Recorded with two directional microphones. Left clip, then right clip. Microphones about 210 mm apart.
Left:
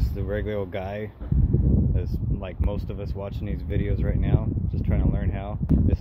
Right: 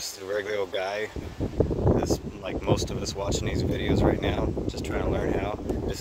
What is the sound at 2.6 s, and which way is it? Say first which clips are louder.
Speech: right 7 dB; 10° right (ahead or behind).